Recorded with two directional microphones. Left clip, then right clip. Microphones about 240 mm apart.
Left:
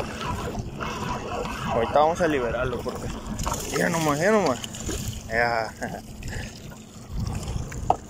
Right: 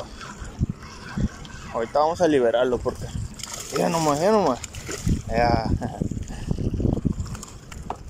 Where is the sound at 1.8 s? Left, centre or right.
Centre.